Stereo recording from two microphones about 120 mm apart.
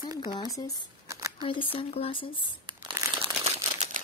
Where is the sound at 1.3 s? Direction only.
45° left (ahead or behind).